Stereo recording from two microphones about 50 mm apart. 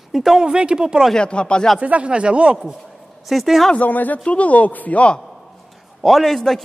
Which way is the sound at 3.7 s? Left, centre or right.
Left.